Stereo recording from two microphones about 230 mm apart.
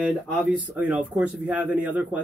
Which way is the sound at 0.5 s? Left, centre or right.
Centre.